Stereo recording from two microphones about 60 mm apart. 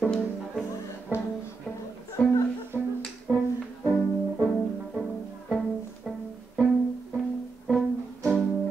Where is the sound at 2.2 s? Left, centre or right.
Left.